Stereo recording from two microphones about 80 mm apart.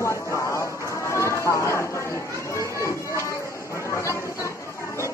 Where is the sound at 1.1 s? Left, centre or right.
Left.